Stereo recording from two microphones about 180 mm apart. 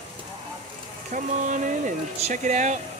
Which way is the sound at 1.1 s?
45° right (ahead or behind).